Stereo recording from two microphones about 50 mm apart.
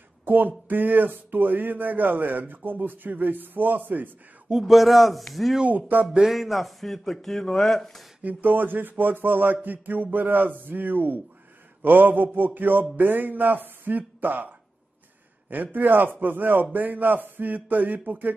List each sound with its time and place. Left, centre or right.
0.2 s a sound: right
0.7 s speech: right
4.5 s a man's voice: centre
5.7 s speech: right
6.2 s a man's voice: centre
8.2 s speech: right
15.5 s speech: right